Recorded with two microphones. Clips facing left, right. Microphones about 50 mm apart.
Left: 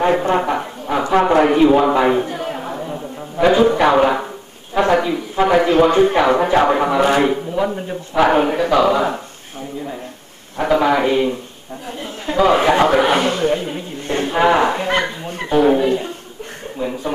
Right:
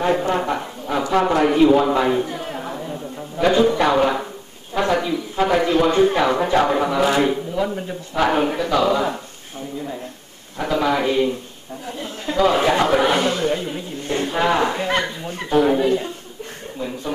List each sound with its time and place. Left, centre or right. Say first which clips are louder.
0.0 s a sound: left 4 dB; left
5.3 s speech: left 4 dB; left
10.6 s a man's voice: left 5 dB; left
15.5 s speech: left 2 dB; centre